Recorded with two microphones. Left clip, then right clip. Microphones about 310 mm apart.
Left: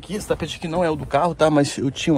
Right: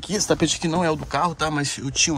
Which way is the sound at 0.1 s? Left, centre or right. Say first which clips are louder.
Right 4 dB; right.